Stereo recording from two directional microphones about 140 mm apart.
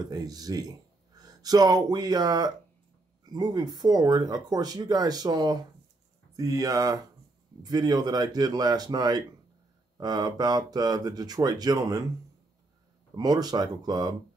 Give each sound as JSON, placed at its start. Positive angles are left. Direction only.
{"t": 0.0, "sound": "speech", "side_deg": -25}
{"t": 13.1, "sound": "speech", "side_deg": -30}